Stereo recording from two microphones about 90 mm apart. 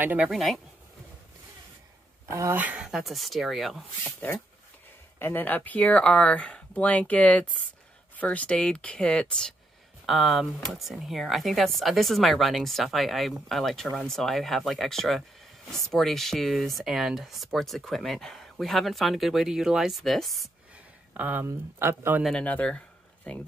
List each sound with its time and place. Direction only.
0.0 s speech: 20° right (ahead or behind)
0.3 s speech: centre (ahead or behind)
2.2 s speech: 35° right (ahead or behind)
2.5 s speech: 15° right (ahead or behind)
2.9 s speech: centre (ahead or behind)
5.2 s speech: 20° left (ahead or behind)
10.0 s speech: centre (ahead or behind)
21.1 s speech: 20° right (ahead or behind)
22.4 s speech: 15° left (ahead or behind)